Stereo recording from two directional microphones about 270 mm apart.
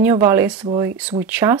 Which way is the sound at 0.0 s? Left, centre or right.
Centre.